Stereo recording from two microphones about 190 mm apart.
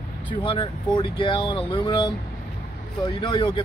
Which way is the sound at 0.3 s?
25° left (ahead or behind).